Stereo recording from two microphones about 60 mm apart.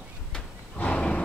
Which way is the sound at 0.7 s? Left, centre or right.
Centre.